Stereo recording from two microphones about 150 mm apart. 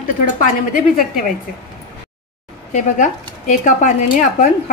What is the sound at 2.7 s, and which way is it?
A woman's voice, 55° left (ahead or behind).